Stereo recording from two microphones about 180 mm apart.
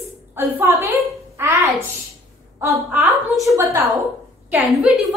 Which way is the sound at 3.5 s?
15° right (ahead or behind).